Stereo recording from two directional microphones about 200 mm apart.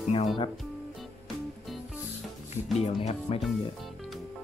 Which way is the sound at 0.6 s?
Centre (ahead or behind).